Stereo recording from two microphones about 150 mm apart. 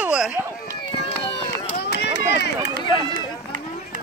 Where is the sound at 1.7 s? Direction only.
90° left.